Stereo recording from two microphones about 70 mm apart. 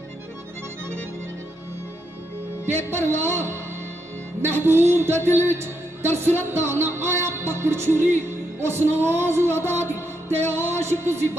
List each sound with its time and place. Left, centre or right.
2.9 s music: right